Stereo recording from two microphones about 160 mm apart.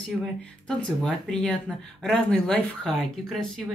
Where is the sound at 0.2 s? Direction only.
5° left (ahead or behind).